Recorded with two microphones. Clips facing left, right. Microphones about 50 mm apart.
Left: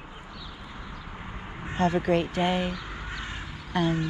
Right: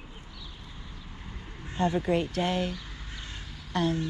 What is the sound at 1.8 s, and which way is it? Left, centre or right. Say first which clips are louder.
Speech: left 2 dB; left.